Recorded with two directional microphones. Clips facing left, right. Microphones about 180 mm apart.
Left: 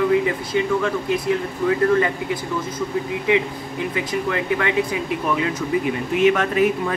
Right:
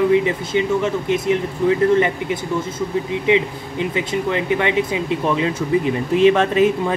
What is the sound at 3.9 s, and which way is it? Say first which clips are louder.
Speech: right 2 dB; 25° right (ahead or behind).